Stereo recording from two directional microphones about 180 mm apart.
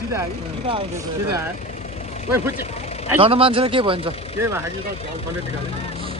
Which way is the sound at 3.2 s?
30° right (ahead or behind).